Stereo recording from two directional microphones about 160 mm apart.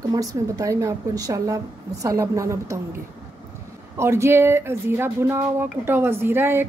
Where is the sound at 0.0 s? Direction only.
20° right (ahead or behind).